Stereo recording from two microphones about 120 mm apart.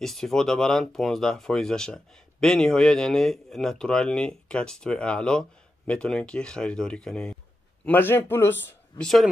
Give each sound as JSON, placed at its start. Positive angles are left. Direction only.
{"t": 0.0, "sound": "speech", "side_deg": 5}
{"t": 7.8, "sound": "speech", "side_deg": 15}
{"t": 9.0, "sound": "speech", "side_deg": 0}